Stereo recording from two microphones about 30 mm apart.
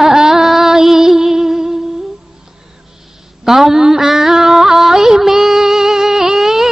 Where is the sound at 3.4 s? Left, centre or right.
Centre.